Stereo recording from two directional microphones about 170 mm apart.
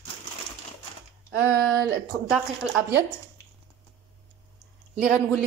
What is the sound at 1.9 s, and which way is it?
Speech, 10° right (ahead or behind).